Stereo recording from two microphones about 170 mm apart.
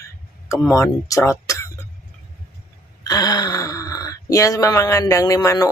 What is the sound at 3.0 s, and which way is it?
Speech, 20° left (ahead or behind).